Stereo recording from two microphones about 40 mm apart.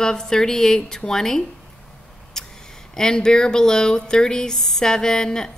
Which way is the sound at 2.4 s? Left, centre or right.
Centre.